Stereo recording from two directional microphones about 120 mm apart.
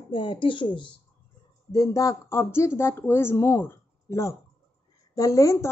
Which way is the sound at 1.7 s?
30° left (ahead or behind).